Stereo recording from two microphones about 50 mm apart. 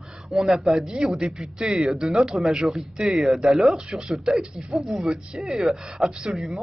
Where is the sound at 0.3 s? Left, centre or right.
Centre.